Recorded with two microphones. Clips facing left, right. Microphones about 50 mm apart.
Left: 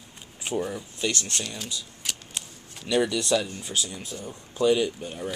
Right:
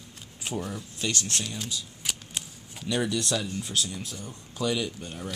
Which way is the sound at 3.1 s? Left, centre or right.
Centre.